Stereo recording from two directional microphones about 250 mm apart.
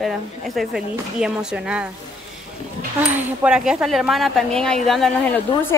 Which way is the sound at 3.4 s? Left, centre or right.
Centre.